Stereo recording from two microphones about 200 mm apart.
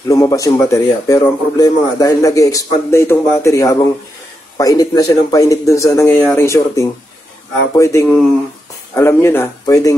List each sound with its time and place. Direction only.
0.1 s a man's voice: 15° left (ahead or behind)